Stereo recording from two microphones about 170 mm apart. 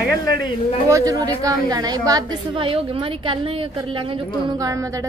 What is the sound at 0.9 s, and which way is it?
A woman's voice, 20° right (ahead or behind).